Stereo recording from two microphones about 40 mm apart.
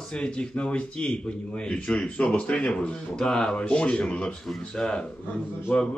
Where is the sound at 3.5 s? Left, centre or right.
Left.